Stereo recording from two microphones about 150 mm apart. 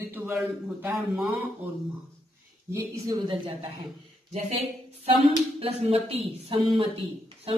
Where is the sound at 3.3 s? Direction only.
40° right (ahead or behind).